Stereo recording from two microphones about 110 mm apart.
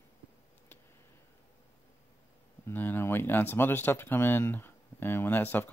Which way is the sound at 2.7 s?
20° left (ahead or behind).